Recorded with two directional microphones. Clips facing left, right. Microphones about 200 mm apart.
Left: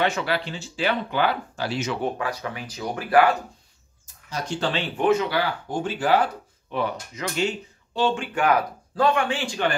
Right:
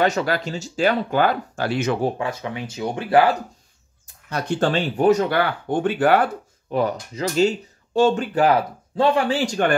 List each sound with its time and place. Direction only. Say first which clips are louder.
0.0 s speech: right 4 dB; 40° right (ahead or behind)
1.6 s speech: right 7 dB; 55° right (ahead or behind)
2.0 s speech: right 3 dB; 30° right (ahead or behind)
4.3 s speech: right 6 dB; 60° right (ahead or behind)
6.7 s speech: right 5 dB; 40° right (ahead or behind)